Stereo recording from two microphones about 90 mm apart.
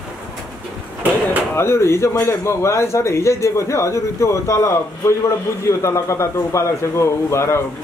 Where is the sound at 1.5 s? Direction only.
30° left (ahead or behind).